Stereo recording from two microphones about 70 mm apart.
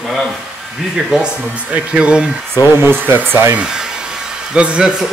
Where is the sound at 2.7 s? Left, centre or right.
Right.